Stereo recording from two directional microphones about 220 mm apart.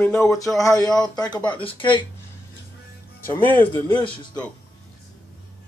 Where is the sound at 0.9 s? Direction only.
15° left (ahead or behind).